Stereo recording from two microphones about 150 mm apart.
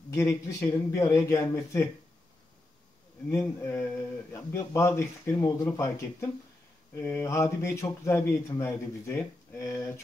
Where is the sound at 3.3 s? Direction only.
15° left (ahead or behind).